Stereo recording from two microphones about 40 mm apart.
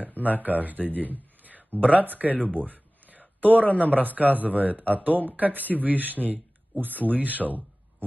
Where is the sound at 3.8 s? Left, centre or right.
Right.